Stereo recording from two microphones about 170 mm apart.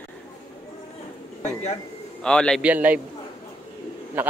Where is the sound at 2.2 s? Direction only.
5° left (ahead or behind).